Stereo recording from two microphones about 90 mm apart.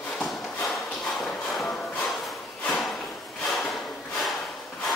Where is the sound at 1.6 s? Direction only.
15° left (ahead or behind).